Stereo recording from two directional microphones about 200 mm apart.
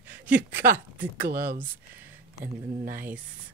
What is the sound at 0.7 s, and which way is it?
Speech, 45° right (ahead or behind).